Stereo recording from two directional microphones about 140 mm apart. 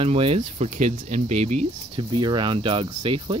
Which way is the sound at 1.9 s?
35° right (ahead or behind).